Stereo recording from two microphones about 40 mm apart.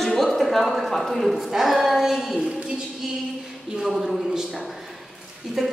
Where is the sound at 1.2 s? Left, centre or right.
Centre.